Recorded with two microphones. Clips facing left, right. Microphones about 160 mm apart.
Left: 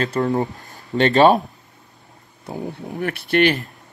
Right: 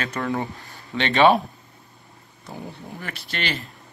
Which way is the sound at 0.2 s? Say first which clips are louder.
Left 7 dB; 30° left (ahead or behind).